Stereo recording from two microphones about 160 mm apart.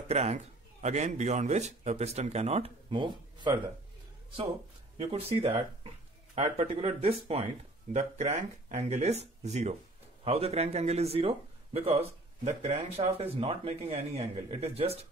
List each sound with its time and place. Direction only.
0.1 s a man's voice: 40° right (ahead or behind)
4.9 s a man's voice: 40° right (ahead or behind)